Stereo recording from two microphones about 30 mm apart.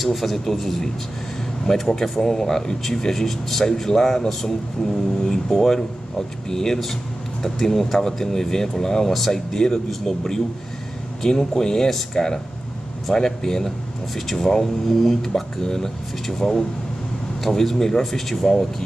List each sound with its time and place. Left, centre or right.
0.0 s a man's voice: centre
5.2 s speech: centre